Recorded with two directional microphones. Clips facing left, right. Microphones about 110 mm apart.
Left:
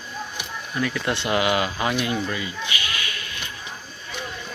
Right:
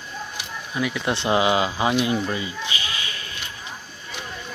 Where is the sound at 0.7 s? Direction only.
15° right (ahead or behind).